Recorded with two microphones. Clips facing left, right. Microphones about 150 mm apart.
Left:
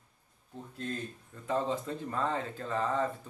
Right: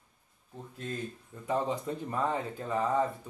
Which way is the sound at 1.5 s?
15° right (ahead or behind).